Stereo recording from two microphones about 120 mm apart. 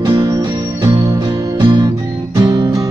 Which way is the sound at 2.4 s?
30° right (ahead or behind).